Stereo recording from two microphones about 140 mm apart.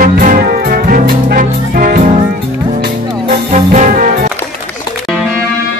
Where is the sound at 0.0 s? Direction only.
80° right.